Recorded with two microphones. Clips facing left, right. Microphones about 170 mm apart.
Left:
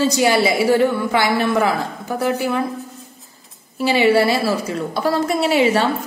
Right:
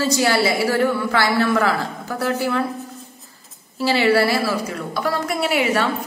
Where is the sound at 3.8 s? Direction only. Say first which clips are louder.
Left 2 dB; 15° left (ahead or behind).